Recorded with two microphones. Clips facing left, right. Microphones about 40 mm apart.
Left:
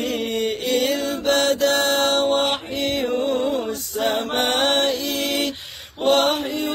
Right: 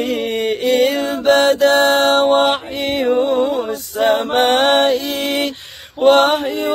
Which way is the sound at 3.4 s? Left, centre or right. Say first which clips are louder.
Right 6 dB; centre.